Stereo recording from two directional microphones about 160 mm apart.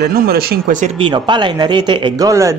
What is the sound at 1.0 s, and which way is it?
A man's voice, 30° right (ahead or behind).